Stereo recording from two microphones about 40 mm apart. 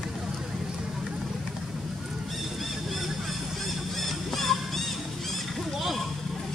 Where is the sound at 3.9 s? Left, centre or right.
Centre.